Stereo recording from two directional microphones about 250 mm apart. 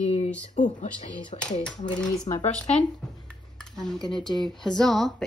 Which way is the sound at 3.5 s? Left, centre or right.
Centre.